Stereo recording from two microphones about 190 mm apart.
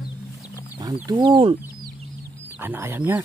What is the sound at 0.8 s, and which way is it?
Speech, 20° right (ahead or behind).